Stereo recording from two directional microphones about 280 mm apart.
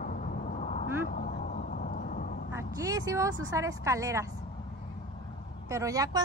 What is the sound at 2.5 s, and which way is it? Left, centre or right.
A woman's voice, centre.